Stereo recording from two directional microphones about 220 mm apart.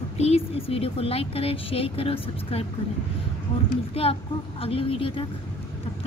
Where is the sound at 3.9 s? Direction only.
25° left (ahead or behind).